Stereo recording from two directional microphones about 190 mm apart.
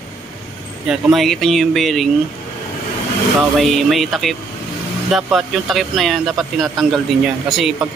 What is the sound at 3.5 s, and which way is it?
Speech, centre (ahead or behind).